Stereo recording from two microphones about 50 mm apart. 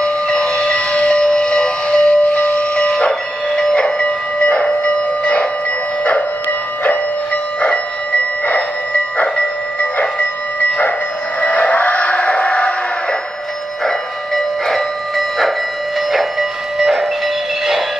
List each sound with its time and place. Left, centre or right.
0.4 s civil defense siren: centre
9.8 s train: left
11.4 s a sound: left
13.8 s train: centre
16.1 s music: centre